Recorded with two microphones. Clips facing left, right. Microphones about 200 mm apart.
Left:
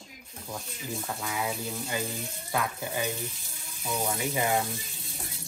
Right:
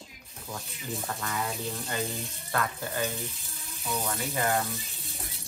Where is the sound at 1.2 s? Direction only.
10° left (ahead or behind).